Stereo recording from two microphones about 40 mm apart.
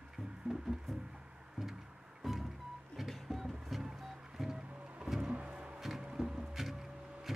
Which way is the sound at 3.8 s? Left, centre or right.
Centre.